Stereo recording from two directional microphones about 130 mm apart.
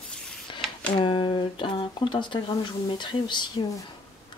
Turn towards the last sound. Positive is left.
turn(degrees=35)  # may be behind; listen again after turning